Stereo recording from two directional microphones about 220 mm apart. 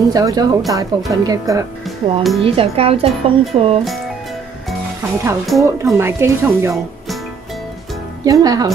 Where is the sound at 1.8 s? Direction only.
Centre (ahead or behind).